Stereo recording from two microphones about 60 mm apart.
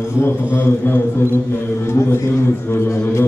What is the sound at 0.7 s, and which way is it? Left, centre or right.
A man's voice, left.